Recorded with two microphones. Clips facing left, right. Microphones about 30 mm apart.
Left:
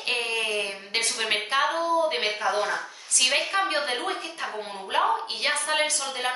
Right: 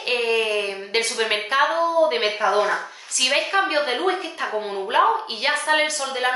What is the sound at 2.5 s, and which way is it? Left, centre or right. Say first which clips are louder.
Speech: right 6 dB; right.